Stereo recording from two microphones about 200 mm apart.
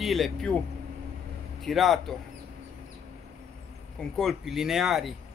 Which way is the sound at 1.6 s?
Centre (ahead or behind).